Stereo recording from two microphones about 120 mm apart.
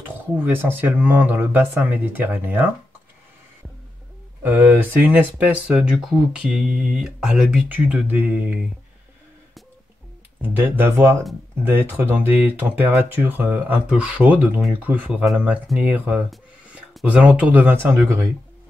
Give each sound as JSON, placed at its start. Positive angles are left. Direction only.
{"t": 0.4, "sound": "speech", "side_deg": -15}
{"t": 4.4, "sound": "speech", "side_deg": -15}
{"t": 10.4, "sound": "speech", "side_deg": -15}
{"t": 16.3, "sound": "a sound", "side_deg": 0}
{"t": 17.0, "sound": "speech", "side_deg": -10}
{"t": 18.0, "sound": "speech", "side_deg": -25}